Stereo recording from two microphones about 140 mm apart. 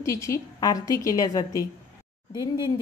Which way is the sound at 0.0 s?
20° left (ahead or behind).